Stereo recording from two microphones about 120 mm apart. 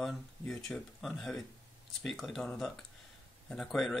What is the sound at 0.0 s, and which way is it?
Speech, centre (ahead or behind).